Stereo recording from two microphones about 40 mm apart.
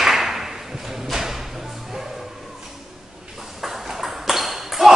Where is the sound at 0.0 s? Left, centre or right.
Centre.